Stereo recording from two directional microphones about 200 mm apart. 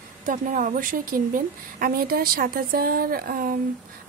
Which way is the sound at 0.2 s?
40° right (ahead or behind).